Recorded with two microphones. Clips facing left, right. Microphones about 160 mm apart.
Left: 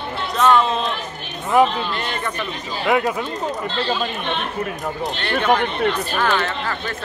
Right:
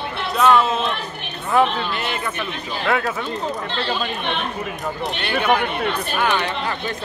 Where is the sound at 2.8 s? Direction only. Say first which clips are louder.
Left 3 dB; 15° left (ahead or behind).